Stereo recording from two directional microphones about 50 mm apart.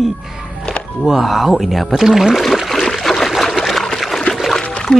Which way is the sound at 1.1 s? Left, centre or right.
Centre.